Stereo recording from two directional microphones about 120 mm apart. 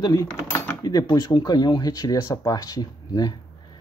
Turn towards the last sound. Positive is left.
turn(degrees=35)  # may be behind; listen again after turning